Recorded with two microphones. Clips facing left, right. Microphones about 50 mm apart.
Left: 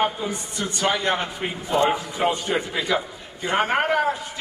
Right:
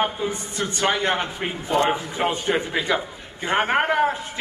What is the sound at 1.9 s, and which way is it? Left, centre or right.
A man's voice, right.